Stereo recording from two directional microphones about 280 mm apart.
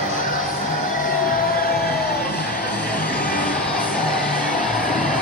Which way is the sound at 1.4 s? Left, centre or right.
Left.